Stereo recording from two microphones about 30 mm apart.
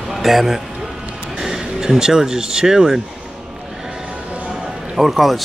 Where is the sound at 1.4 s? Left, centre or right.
Centre.